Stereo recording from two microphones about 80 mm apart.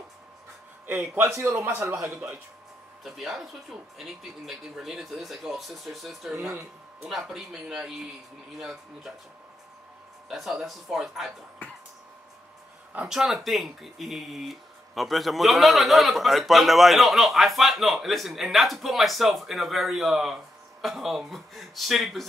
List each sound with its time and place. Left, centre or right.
0.8 s a man's voice: right
3.0 s speech: centre
10.2 s speech: centre
13.1 s speech: centre